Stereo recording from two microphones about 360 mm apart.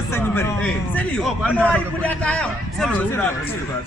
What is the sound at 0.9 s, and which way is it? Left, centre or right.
A man's voice, centre.